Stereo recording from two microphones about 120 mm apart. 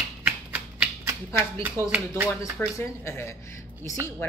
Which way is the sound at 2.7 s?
25° left (ahead or behind).